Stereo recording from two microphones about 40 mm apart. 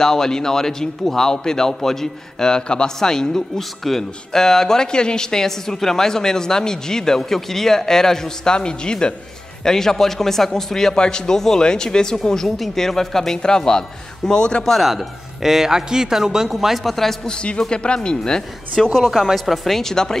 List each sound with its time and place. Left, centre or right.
0.0 s a man's voice: centre
9.7 s a man's voice: centre
14.8 s a man's voice: centre
17.3 s speech: left
18.9 s speech: centre